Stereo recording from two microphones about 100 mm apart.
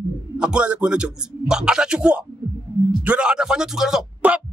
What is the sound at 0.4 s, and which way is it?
A man's voice, 10° right (ahead or behind).